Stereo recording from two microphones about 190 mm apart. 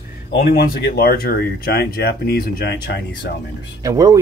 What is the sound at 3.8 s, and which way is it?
Speech, 20° right (ahead or behind).